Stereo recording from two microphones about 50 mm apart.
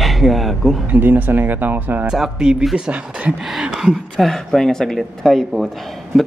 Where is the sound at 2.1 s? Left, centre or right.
Centre.